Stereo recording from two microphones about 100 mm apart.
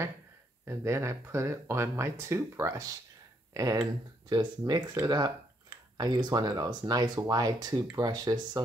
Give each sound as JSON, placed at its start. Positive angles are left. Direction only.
{"t": 0.7, "sound": "speech", "side_deg": -25}
{"t": 4.3, "sound": "speech", "side_deg": -45}